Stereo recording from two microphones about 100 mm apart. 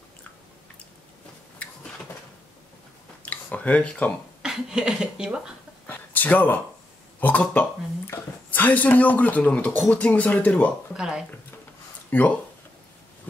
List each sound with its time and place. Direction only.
3.2 s a sound: 15° left (ahead or behind)
4.4 s speech: 5° right (ahead or behind)
5.9 s a sound: 15° left (ahead or behind)
7.2 s speech: 15° left (ahead or behind)
11.0 s speech: 5° right (ahead or behind)
12.1 s speech: 15° left (ahead or behind)